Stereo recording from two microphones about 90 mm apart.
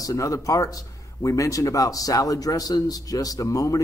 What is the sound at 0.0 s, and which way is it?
Speech, 35° left (ahead or behind).